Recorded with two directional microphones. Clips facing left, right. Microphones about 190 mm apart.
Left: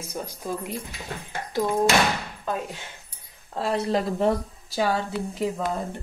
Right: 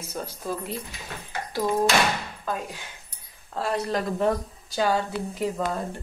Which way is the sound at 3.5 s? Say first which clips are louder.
Left 2 dB; 25° left (ahead or behind).